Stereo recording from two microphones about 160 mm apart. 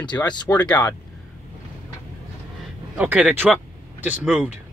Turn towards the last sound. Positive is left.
turn(degrees=-10)  # may be behind; listen again after turning